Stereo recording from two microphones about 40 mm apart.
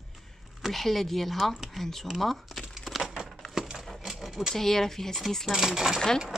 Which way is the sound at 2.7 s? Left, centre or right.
Centre.